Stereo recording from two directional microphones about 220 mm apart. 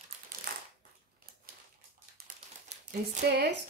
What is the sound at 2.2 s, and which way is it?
Typewriter, 45° right (ahead or behind).